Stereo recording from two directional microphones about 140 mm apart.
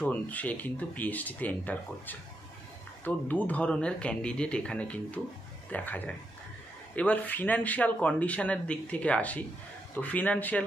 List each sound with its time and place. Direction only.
0.0 s speech: 10° left (ahead or behind)